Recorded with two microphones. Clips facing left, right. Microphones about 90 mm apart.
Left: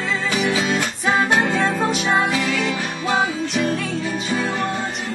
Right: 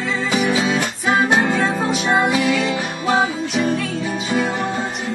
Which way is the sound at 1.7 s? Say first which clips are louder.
Right 1 dB; centre (ahead or behind).